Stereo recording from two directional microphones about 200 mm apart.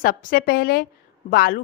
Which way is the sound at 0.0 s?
45° left (ahead or behind).